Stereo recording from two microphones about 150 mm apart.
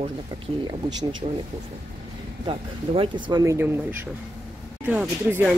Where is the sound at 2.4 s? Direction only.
35° right (ahead or behind).